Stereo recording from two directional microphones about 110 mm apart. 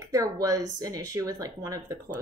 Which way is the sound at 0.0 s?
30° right (ahead or behind).